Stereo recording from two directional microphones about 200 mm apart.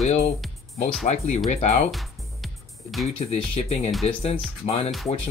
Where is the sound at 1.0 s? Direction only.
35° left (ahead or behind).